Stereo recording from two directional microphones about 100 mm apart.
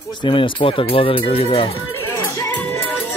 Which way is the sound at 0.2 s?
55° left (ahead or behind).